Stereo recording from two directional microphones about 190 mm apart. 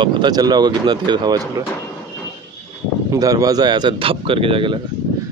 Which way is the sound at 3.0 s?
20° right (ahead or behind).